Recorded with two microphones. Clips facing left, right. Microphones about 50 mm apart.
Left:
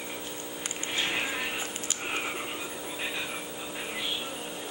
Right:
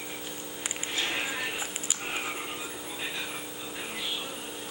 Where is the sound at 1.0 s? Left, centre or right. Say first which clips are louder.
Left 1 dB; centre.